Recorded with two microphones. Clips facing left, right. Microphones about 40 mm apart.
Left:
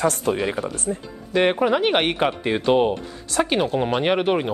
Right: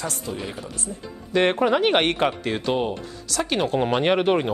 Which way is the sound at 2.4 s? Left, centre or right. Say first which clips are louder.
Left 5 dB; centre.